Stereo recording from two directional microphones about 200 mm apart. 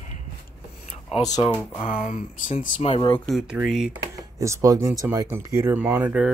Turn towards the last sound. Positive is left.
turn(degrees=-10)  # may be behind; listen again after turning